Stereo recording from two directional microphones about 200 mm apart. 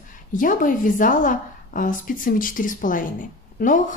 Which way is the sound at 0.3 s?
40° left (ahead or behind).